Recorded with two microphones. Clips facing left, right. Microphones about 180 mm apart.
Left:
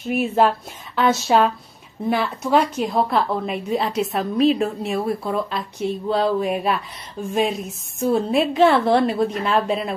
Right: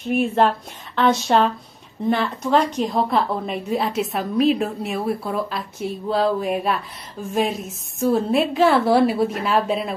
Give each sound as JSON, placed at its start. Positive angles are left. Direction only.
{"t": 0.0, "sound": "a woman's voice", "side_deg": 5}